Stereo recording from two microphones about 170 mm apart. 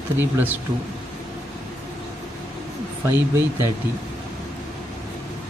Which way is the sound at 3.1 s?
15° right (ahead or behind).